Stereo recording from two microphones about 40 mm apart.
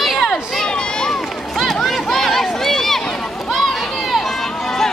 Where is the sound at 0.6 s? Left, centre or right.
Left.